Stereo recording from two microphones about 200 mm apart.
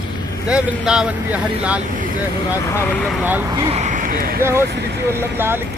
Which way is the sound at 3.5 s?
25° right (ahead or behind).